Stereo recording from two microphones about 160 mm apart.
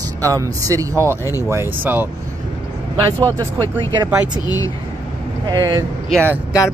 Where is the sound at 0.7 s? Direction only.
20° right (ahead or behind).